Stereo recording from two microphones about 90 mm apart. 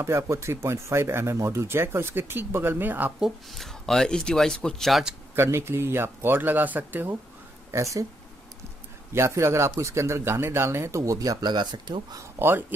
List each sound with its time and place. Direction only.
0.0 s speech: 30° right (ahead or behind)
3.2 s speech: centre (ahead or behind)
5.3 s speech: 30° right (ahead or behind)
7.7 s speech: 35° right (ahead or behind)
9.1 s speech: 30° right (ahead or behind)
11.5 s speech: 55° right (ahead or behind)
12.2 s speech: 25° right (ahead or behind)